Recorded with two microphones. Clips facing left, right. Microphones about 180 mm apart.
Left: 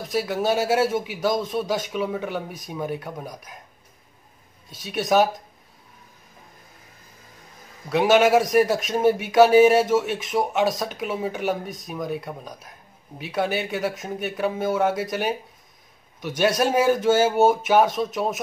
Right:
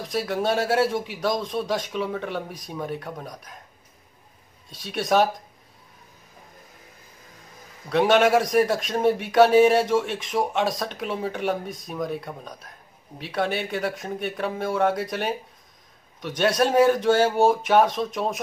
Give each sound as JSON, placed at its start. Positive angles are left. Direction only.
{"t": 0.1, "sound": "a man's voice", "side_deg": 5}
{"t": 4.6, "sound": "a man's voice", "side_deg": 5}
{"t": 7.9, "sound": "a man's voice", "side_deg": 5}